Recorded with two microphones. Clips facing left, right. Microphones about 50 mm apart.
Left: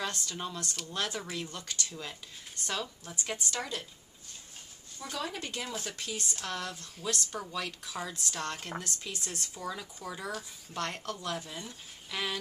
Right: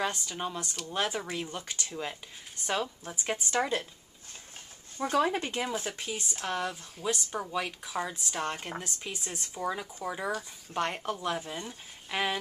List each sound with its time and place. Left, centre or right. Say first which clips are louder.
0.0 s speech: right 4 dB; centre; by 3.8 s right
4.9 s speech: right 10 dB; right
5.7 s speech: right 4 dB; centre